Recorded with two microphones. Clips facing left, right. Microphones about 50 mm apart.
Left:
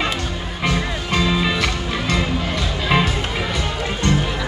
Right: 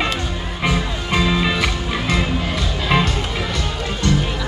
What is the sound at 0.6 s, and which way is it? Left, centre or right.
Music, centre.